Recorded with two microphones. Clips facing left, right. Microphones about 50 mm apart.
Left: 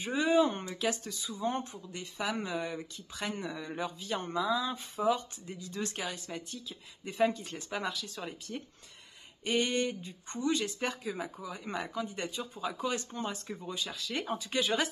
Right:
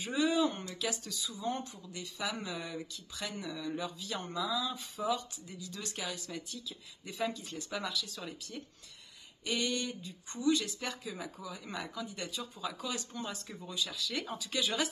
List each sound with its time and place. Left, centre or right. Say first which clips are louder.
0.0 s speech: left 3 dB; left